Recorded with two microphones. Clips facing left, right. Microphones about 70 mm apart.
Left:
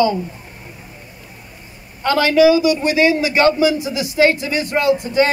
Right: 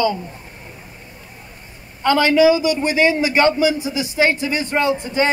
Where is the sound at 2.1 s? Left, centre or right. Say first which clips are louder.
Left 1 dB; right.